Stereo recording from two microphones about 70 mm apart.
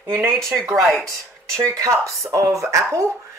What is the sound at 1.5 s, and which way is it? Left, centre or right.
Speech, right.